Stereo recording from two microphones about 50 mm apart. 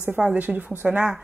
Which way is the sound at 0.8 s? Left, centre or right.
Centre.